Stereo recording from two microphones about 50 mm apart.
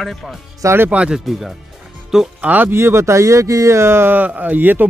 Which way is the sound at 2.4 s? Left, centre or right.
Right.